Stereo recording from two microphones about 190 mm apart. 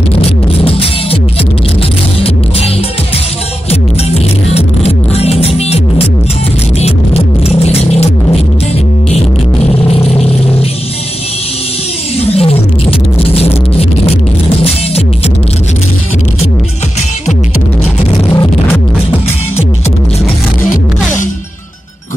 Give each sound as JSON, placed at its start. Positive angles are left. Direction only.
{"t": 0.2, "sound": "music", "side_deg": 30}
{"t": 4.1, "sound": "music", "side_deg": 35}
{"t": 12.2, "sound": "music", "side_deg": 35}
{"t": 18.3, "sound": "music", "side_deg": 20}